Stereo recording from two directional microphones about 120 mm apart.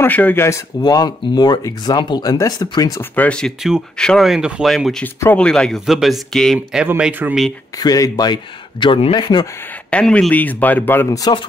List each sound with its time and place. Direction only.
0.0 s speech: 15° left (ahead or behind); by 3.0 s 30° left (ahead or behind)
3.0 s speech: 10° left (ahead or behind)
5.0 s speech: 15° left (ahead or behind); by 6.9 s centre (ahead or behind)
7.0 s speech: 15° right (ahead or behind)
7.7 s speech: 30° left (ahead or behind)
9.8 s speech: 10° left (ahead or behind)
11.1 s speech: 30° left (ahead or behind)